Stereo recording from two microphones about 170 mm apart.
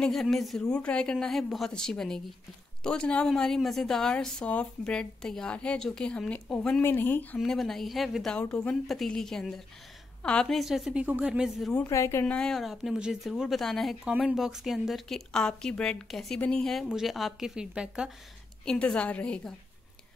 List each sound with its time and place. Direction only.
0.0 s speech: centre (ahead or behind)
11.8 s a woman's voice: 15° left (ahead or behind)
12.4 s a woman's voice: centre (ahead or behind)